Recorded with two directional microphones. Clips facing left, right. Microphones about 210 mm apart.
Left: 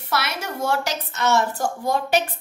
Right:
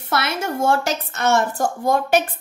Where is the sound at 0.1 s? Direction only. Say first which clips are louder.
Right 4 dB; 50° right (ahead or behind).